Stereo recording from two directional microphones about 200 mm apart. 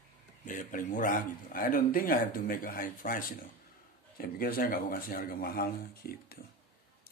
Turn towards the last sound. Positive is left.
turn(degrees=50)  # may be behind; listen again after turning